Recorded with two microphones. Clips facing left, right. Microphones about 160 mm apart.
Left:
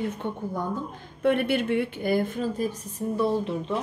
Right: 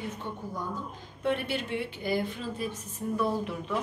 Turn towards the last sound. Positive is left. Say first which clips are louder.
# left 5 dB
turn(degrees=30)  # may be behind; listen again after turning